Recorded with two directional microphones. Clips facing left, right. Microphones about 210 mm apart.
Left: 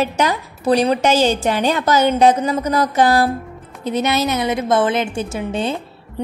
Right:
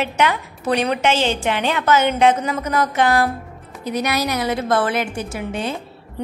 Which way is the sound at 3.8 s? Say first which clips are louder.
Left 3 dB; 25° left (ahead or behind).